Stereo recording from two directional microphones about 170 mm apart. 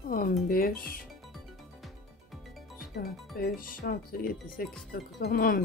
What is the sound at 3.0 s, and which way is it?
Speech, 60° left (ahead or behind).